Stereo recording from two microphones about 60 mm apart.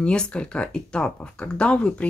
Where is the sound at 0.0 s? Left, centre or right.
Centre.